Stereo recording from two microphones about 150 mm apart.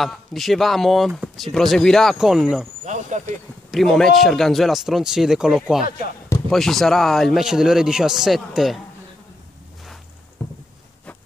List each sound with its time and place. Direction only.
0.0 s speech: centre (ahead or behind)
2.8 s speech: 50° right (ahead or behind)
3.7 s speech: 5° left (ahead or behind)
10.4 s a sound: 15° left (ahead or behind)